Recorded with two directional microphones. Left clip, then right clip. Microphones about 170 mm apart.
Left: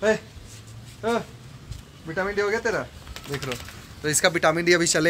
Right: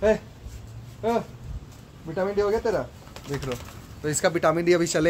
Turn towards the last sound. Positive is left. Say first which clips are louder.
# left 1 dB
turn(degrees=-5)  # may be behind; listen again after turning